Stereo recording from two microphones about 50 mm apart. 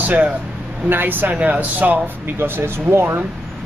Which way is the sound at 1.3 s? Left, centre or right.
Right.